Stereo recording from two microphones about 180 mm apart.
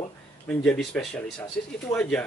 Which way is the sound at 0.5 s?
5° left (ahead or behind).